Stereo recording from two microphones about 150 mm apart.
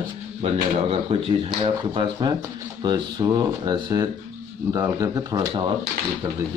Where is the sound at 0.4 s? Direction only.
35° right (ahead or behind).